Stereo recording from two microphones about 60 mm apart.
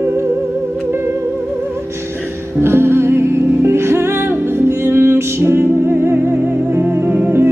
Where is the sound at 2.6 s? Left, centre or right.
Right.